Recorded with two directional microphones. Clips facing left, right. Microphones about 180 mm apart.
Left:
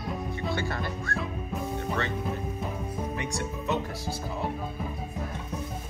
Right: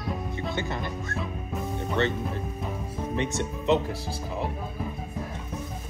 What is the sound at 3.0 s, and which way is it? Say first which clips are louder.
Speech: right 6 dB; 20° right (ahead or behind).